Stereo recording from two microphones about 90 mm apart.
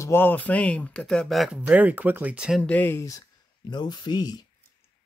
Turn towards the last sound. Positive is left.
turn(degrees=50)  # may be behind; listen again after turning